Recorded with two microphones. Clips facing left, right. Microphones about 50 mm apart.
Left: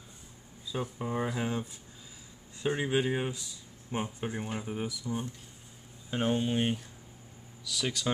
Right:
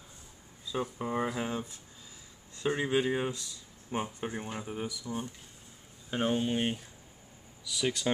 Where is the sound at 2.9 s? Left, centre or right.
Centre.